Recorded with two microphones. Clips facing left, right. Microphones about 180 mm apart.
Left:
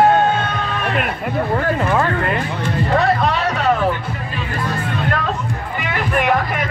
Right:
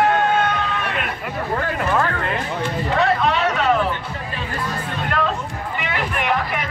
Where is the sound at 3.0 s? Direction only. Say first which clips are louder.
Right 1 dB; 40° left (ahead or behind).